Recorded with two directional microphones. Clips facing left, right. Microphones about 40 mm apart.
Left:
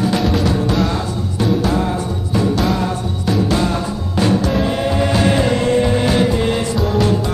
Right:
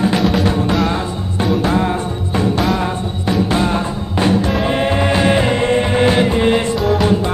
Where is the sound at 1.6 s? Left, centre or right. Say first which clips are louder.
Right 2 dB; right.